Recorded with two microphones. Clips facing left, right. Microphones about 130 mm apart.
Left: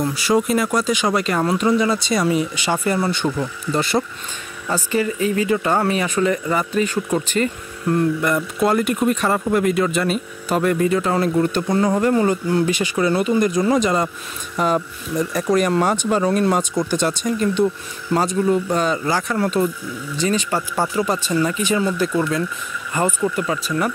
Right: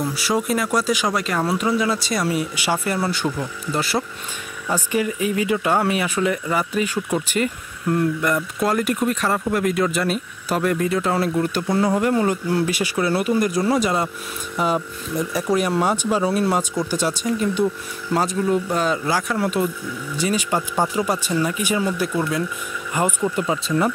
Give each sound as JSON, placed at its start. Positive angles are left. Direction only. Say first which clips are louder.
{"t": 0.0, "sound": "speech", "louder": "left 4 dB", "side_deg": 0}
{"t": 23.3, "sound": "speech", "louder": "right 1 dB", "side_deg": -20}